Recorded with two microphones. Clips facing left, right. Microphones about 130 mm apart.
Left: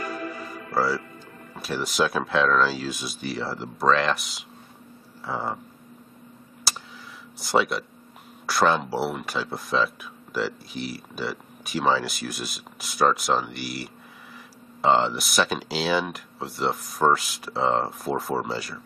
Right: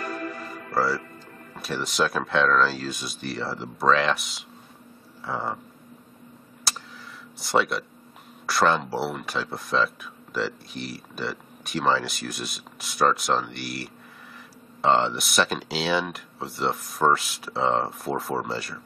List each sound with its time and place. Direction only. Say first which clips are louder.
0.0 s music: even; centre (ahead or behind)
1.5 s speech: left 1 dB; centre (ahead or behind)
6.7 s a sound: left 1 dB; centre (ahead or behind)
7.3 s speech: left 1 dB; centre (ahead or behind)